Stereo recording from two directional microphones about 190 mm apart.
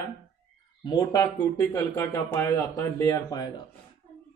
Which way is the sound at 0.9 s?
20° left (ahead or behind).